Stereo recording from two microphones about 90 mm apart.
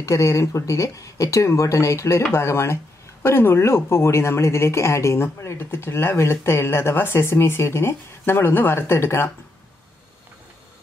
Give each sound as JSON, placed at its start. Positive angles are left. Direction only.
{"t": 0.0, "sound": "speech", "side_deg": 35}